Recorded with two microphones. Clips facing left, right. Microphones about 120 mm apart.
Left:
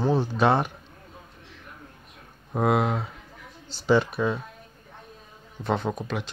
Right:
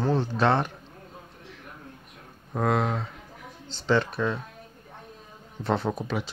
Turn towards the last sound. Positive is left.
turn(degrees=-5)  # may be behind; listen again after turning